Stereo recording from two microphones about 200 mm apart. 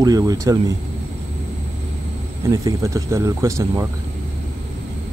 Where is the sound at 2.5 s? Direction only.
15° right (ahead or behind).